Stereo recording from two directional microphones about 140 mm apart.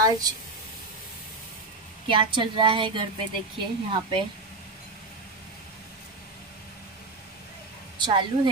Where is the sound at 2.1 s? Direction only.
40° right (ahead or behind).